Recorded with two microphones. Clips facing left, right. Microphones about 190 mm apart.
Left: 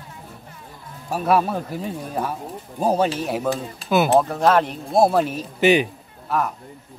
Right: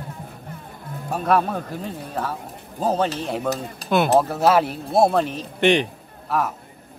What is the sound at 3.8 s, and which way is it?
Speech, 40° right (ahead or behind).